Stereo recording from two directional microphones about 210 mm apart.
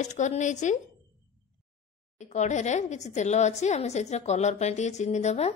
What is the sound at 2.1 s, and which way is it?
A woman's voice, 35° left (ahead or behind).